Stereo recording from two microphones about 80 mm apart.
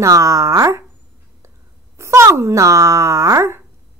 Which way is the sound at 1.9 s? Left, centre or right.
Right.